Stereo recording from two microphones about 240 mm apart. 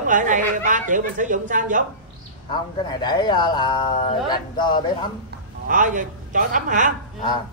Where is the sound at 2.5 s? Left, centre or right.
Centre.